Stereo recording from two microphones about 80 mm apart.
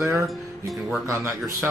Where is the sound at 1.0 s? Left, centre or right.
Right.